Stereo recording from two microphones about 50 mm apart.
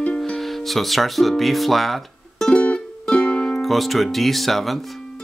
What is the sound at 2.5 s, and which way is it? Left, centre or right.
Music, left.